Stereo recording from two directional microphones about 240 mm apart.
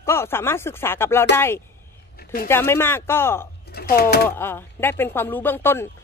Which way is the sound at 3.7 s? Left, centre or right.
Left.